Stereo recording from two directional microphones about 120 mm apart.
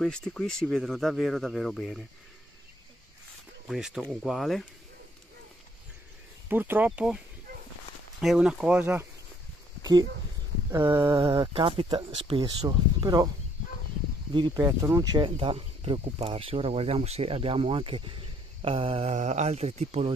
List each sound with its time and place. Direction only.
0.0 s speech: 5° left (ahead or behind)
3.6 s speech: 5° right (ahead or behind)
6.5 s speech: 15° right (ahead or behind)
8.2 s speech: 5° right (ahead or behind)
9.8 s a sound: 35° right (ahead or behind)
11.5 s speech: 50° right (ahead or behind)
12.4 s speech: 35° right (ahead or behind)
14.3 s speech: 40° right (ahead or behind)
14.6 s speech: 30° right (ahead or behind); by 19.0 s 50° right (ahead or behind)
19.0 s speech: 75° right (ahead or behind)